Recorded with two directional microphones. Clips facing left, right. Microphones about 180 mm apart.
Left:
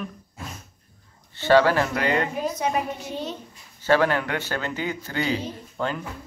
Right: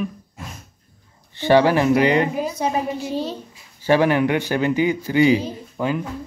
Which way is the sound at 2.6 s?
35° right (ahead or behind).